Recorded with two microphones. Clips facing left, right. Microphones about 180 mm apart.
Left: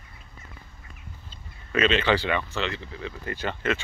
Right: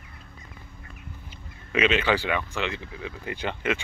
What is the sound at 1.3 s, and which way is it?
Speech, 15° right (ahead or behind).